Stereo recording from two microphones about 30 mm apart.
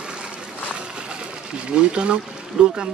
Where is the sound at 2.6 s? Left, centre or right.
Right.